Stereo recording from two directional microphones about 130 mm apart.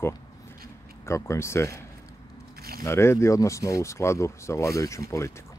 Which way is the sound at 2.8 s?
20° left (ahead or behind).